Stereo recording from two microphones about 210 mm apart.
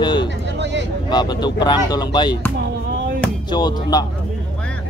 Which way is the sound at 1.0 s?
20° left (ahead or behind).